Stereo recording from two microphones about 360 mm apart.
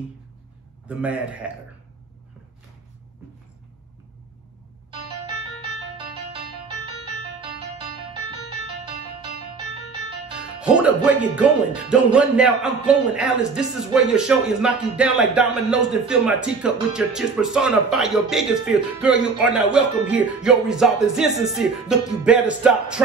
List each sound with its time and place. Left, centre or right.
0.8 s speech: centre
10.6 s speech: centre